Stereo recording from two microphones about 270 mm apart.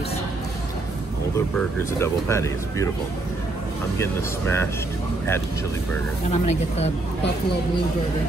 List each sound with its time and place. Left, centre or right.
1.3 s speech: centre
4.0 s speech: centre
6.3 s speech: left